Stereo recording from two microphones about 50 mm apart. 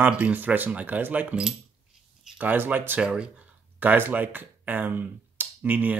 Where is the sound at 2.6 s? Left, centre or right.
Right.